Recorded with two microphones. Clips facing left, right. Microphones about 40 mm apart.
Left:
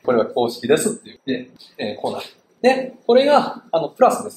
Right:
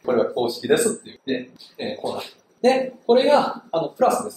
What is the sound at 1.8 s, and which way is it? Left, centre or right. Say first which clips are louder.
Speech: left 3 dB; left.